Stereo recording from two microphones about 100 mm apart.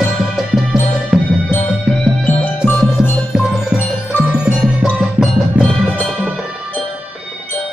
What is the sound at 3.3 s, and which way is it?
Music, 5° right (ahead or behind).